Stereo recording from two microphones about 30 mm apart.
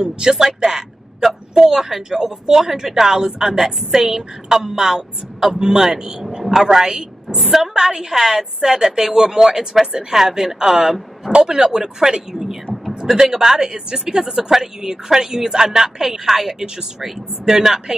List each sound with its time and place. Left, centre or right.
0.0 s speech: centre
0.7 s a sound: centre
1.5 s a woman's voice: centre